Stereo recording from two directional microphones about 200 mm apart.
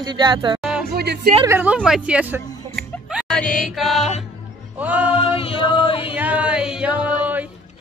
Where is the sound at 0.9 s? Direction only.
55° right (ahead or behind).